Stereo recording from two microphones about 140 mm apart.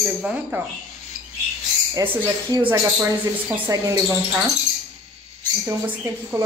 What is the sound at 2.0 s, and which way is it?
Speech, 25° right (ahead or behind).